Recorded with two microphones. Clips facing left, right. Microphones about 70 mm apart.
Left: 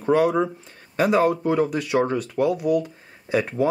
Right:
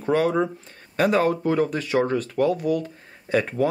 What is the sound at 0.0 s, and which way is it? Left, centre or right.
Speech, centre.